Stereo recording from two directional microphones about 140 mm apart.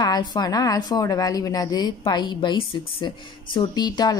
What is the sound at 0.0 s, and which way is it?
A woman's voice, 30° left (ahead or behind).